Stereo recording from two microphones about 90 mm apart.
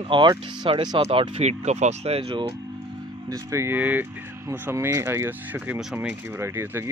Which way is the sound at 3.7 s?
20° right (ahead or behind).